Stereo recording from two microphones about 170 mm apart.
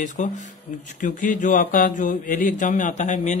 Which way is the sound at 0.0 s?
45° left (ahead or behind).